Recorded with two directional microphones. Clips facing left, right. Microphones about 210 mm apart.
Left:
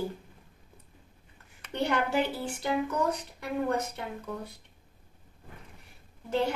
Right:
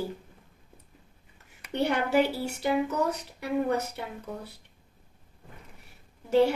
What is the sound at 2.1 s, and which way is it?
Speech, 10° right (ahead or behind).